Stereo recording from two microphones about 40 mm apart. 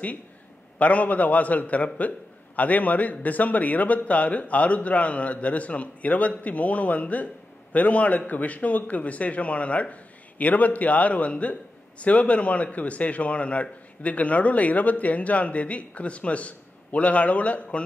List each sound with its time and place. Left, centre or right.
0.7 s a man's voice: left